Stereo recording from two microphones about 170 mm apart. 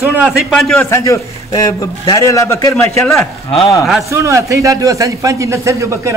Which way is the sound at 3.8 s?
Centre (ahead or behind).